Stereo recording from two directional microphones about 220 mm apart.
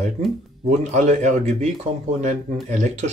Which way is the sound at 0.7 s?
30° right (ahead or behind).